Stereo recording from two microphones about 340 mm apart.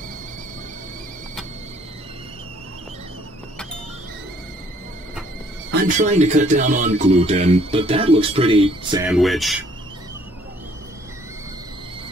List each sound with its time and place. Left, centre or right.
5.7 s speech: right
9.0 s speech: centre